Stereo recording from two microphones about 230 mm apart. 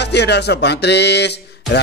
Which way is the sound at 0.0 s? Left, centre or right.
Left.